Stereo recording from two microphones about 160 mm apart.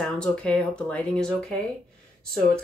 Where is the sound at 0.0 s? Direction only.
5° left (ahead or behind).